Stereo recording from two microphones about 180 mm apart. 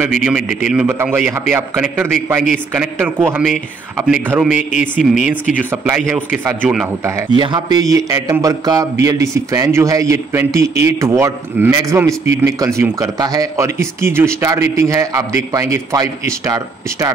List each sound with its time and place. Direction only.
0.0 s a man's voice: 5° right (ahead or behind)